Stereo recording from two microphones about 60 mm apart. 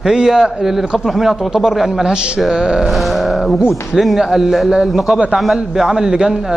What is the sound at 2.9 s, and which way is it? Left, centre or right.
A man's voice, centre.